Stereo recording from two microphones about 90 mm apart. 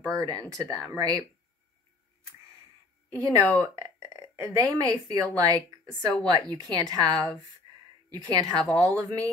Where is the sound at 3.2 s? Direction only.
35° right (ahead or behind).